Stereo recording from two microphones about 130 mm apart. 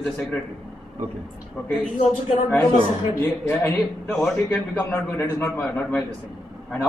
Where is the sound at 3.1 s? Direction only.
25° left (ahead or behind).